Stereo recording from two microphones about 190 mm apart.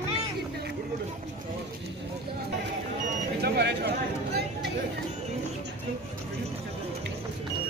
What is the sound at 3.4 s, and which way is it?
Speech, 60° right (ahead or behind).